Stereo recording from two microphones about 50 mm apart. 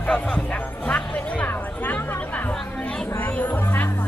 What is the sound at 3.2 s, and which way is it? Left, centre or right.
Speech, left.